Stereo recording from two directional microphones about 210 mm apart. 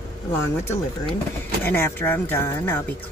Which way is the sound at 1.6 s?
10° left (ahead or behind).